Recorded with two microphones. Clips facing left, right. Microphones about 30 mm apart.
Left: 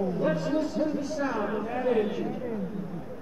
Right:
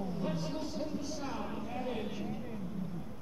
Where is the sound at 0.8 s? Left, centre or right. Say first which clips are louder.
Left 10 dB; left.